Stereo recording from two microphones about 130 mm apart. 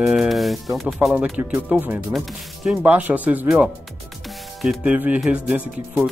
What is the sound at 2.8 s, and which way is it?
Speech, 10° right (ahead or behind).